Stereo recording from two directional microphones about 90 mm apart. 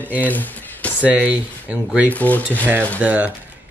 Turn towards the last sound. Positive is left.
turn(degrees=-15)  # may be behind; listen again after turning